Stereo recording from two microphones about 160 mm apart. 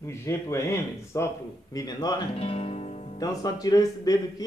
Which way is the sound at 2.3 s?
35° left (ahead or behind).